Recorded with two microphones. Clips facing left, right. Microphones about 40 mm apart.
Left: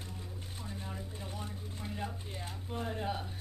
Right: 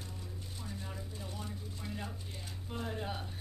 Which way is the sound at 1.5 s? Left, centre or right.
Left.